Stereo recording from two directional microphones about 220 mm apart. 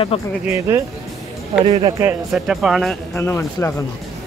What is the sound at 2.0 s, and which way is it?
Speech, centre (ahead or behind).